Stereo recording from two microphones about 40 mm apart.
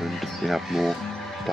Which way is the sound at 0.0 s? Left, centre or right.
Centre.